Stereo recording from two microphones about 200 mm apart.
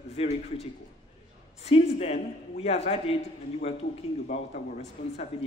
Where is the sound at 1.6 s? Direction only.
30° left (ahead or behind).